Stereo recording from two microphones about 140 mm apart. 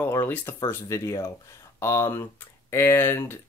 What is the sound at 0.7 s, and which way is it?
Speech, 20° left (ahead or behind).